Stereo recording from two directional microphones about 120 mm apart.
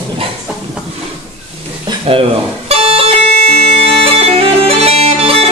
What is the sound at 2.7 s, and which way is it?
Bagpipes, 55° right (ahead or behind).